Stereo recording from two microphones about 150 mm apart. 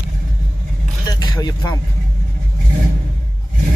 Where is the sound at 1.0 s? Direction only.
25° left (ahead or behind).